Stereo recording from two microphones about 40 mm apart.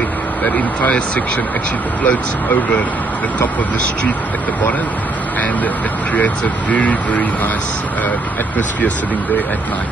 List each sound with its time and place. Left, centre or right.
2.0 s speech: left
6.1 s speech: left